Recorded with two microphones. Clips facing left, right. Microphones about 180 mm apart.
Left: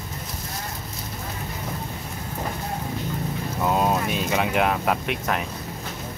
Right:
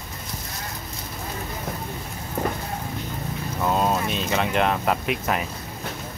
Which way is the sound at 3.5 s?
5° left (ahead or behind).